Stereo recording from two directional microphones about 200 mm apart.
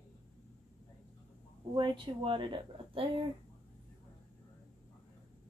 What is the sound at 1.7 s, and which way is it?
Speech, 25° right (ahead or behind).